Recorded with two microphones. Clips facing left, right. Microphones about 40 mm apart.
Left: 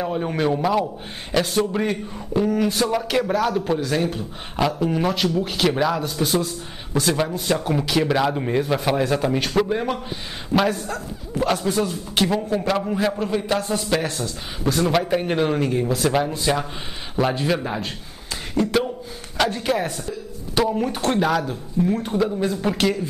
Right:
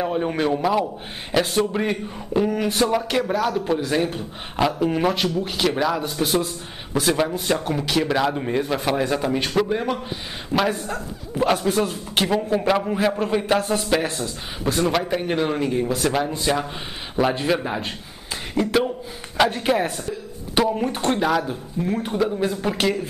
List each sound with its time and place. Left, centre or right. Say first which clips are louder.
0.0 s speech: even; centre
2.9 s a man's voice: even; centre
3.8 s a man's voice: even; centre
5.9 s a man's voice: even; centre
10.9 s speech: even; centre
14.9 s a man's voice: left 2 dB; centre
20.0 s chopping: right 1 dB; right
20.6 s a man's voice: left 1 dB; centre
21.4 s a man's voice: left 2 dB; centre